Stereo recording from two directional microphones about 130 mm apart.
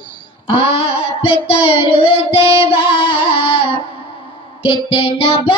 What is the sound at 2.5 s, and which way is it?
Music, 45° left (ahead or behind).